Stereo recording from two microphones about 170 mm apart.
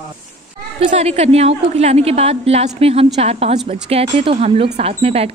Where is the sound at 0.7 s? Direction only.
40° right (ahead or behind).